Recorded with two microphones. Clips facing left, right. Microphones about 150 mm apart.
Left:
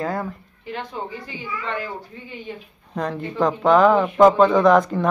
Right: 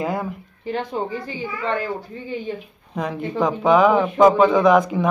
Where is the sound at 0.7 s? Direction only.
35° right (ahead or behind).